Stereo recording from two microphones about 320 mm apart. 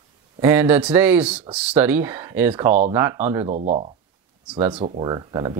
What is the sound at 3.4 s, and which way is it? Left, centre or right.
Speech, right.